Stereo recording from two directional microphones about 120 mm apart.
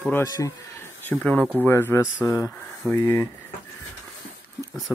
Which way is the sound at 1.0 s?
10° left (ahead or behind).